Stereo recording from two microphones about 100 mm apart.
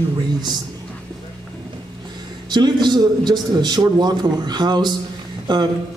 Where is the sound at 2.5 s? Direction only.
45° right (ahead or behind).